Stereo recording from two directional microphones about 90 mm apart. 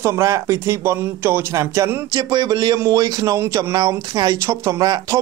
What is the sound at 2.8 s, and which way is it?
Speech, 40° right (ahead or behind).